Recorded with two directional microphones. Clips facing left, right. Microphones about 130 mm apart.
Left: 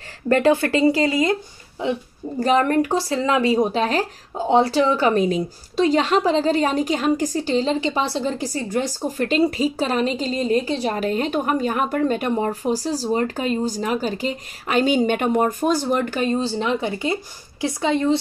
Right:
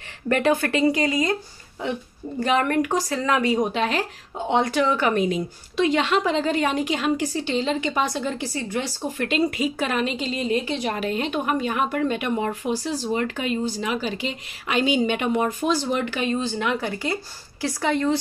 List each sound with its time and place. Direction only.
0.3 s speech: 30° left (ahead or behind)
2.4 s speech: 35° left (ahead or behind)